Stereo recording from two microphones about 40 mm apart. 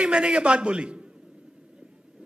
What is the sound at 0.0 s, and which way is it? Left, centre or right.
A man's voice, right.